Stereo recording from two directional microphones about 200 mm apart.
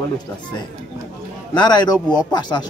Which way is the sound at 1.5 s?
20° left (ahead or behind).